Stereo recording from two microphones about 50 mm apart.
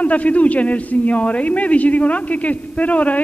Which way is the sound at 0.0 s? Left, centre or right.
Left.